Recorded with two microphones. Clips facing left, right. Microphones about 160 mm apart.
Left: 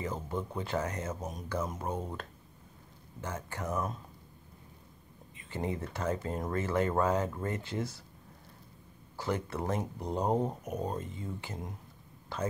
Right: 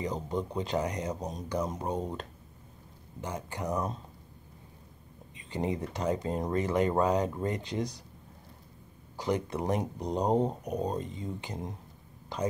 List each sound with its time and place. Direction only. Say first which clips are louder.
0.0 s speech: right 3 dB; 20° right (ahead or behind)
5.4 s speech: right 3 dB; 20° right (ahead or behind)
9.1 s speech: right 3 dB; 15° right (ahead or behind)